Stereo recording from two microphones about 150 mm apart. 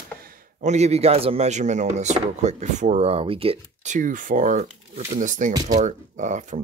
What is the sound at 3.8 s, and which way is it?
Speech, 60° right (ahead or behind).